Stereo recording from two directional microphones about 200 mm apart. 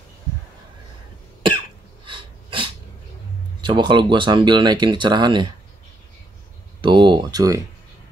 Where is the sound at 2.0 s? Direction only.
25° right (ahead or behind).